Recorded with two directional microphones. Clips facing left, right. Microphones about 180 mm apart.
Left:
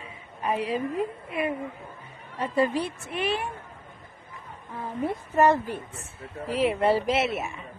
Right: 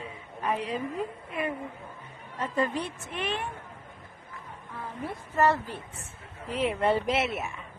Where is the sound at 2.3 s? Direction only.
10° left (ahead or behind).